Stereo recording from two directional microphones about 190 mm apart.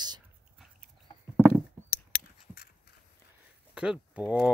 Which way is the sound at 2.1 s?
55° left (ahead or behind).